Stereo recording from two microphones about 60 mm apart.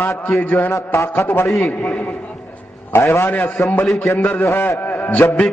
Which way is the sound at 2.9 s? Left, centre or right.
Left.